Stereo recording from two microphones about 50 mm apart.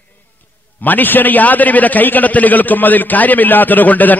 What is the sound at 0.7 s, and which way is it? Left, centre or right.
A man's voice, left.